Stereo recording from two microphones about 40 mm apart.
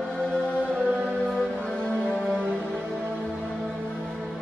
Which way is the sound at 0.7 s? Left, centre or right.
Right.